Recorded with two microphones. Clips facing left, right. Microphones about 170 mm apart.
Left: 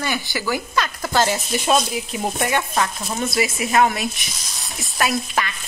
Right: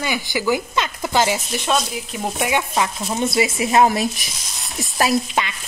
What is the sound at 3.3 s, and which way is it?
Speech, 25° right (ahead or behind).